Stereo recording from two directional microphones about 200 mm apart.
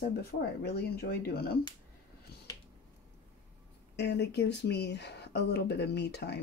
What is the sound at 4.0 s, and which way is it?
Speech, 60° left (ahead or behind).